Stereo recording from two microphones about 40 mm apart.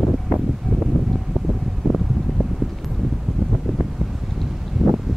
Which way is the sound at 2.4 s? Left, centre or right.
Centre.